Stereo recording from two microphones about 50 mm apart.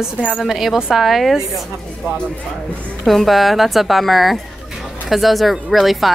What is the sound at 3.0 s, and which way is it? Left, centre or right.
A woman's voice, centre.